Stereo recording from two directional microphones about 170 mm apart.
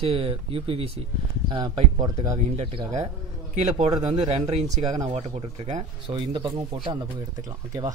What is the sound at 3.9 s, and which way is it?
Speech, 35° right (ahead or behind).